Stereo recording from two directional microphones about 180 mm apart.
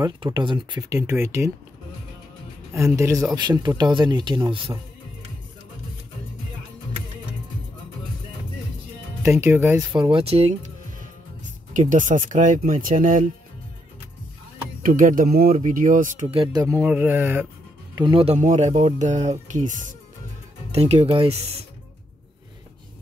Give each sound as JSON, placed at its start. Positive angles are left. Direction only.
{"t": 0.0, "sound": "speech", "side_deg": -25}
{"t": 2.7, "sound": "speech", "side_deg": -15}
{"t": 9.2, "sound": "speech", "side_deg": -15}
{"t": 9.9, "sound": "speech", "side_deg": -30}
{"t": 11.7, "sound": "speech", "side_deg": -45}
{"t": 14.8, "sound": "speech", "side_deg": -50}
{"t": 16.5, "sound": "speech", "side_deg": -15}
{"t": 17.9, "sound": "speech", "side_deg": -25}
{"t": 20.7, "sound": "speech", "side_deg": -35}